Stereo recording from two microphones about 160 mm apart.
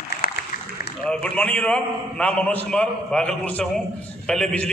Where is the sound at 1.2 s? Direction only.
10° left (ahead or behind).